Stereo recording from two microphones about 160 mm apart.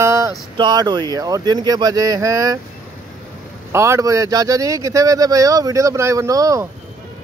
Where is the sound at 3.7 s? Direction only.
15° right (ahead or behind).